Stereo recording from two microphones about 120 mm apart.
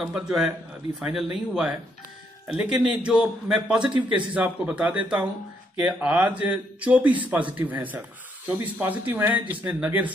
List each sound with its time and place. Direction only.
0.0 s speech: 5° right (ahead or behind)